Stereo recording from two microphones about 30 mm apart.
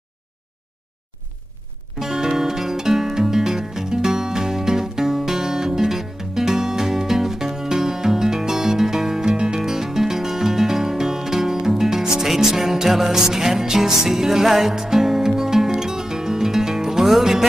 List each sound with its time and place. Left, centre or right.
2.0 s music: centre